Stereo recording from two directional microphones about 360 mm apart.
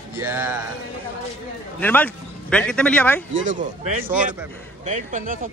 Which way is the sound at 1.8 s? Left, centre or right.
Centre.